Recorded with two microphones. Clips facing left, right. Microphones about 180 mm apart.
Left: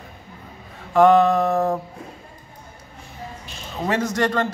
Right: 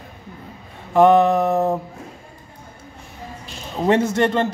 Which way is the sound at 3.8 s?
25° right (ahead or behind).